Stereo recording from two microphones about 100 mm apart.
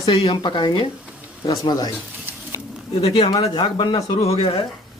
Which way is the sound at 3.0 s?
70° left (ahead or behind).